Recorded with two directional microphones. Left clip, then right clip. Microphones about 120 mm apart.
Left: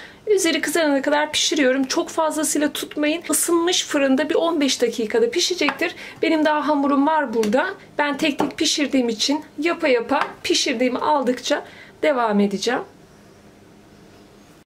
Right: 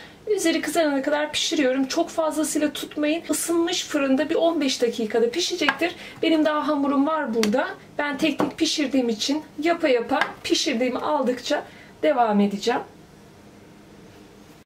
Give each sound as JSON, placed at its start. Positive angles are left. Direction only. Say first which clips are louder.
{"t": 0.3, "sound": "speech", "louder": "left 4 dB", "side_deg": 40}